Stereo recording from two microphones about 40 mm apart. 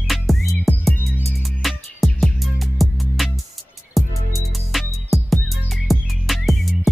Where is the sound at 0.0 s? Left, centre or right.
Centre.